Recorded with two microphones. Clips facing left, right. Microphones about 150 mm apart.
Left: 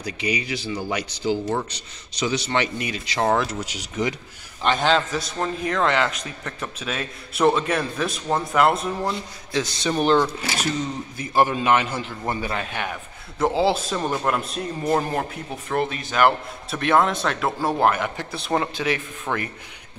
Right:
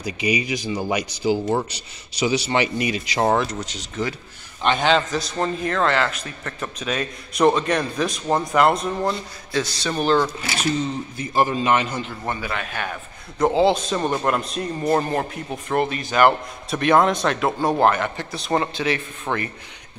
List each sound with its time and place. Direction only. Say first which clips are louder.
0.0 s speech: right 3 dB; 10° right (ahead or behind)
3.3 s a man's voice: right 1 dB; 10° left (ahead or behind)
4.6 s a man's voice: right 1 dB; centre (ahead or behind); by 6.5 s 15° left (ahead or behind)
6.8 s a man's voice: right 5 dB; 5° left (ahead or behind)
9.5 s a man's voice: even; 20° left (ahead or behind)
11.1 s a man's voice: left 1 dB; 5° left (ahead or behind)
12.4 s speech: left 1 dB; 30° left (ahead or behind)
13.4 s a man's voice: right 3 dB; 5° left (ahead or behind)
19.3 s speech: right 1 dB; 10° right (ahead or behind)